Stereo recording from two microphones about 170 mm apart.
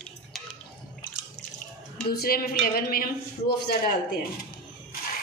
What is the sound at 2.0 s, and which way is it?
A woman's voice, 65° left (ahead or behind).